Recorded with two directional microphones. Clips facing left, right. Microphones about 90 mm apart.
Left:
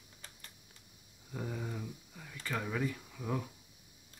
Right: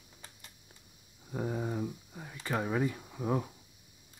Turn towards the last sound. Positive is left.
turn(degrees=-30)  # may be behind; listen again after turning